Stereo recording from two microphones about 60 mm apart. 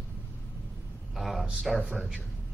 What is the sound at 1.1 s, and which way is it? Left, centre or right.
Speech, centre.